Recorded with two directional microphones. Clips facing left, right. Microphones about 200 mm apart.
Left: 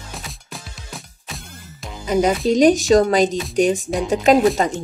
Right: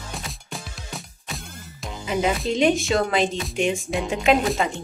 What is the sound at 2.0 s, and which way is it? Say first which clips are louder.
Music: left 6 dB; 40° left (ahead or behind).